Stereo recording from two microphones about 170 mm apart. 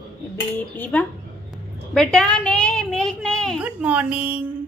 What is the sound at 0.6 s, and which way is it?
A woman's voice, 10° left (ahead or behind).